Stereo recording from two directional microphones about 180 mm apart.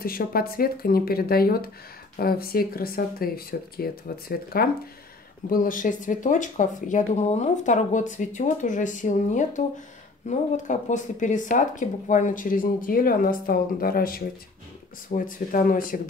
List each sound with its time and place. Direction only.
0.0 s speech: 55° left (ahead or behind)